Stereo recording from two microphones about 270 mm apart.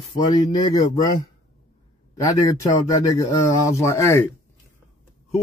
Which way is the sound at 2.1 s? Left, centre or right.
Centre.